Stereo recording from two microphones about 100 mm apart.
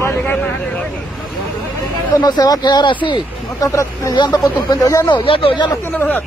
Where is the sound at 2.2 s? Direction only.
40° left (ahead or behind).